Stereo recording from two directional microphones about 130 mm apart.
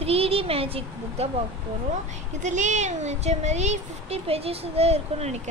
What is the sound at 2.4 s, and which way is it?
Speech, 70° right (ahead or behind).